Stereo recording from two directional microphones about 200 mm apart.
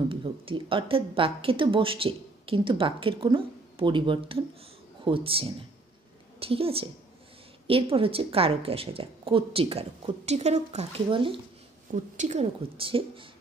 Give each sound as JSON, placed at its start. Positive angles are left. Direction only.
{"t": 0.1, "sound": "a woman's voice", "side_deg": -25}
{"t": 11.9, "sound": "a woman's voice", "side_deg": -40}